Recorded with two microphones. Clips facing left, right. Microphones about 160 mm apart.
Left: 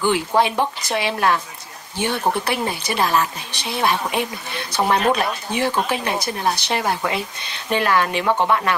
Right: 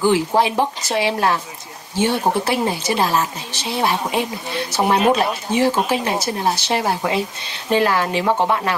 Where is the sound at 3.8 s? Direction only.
15° right (ahead or behind).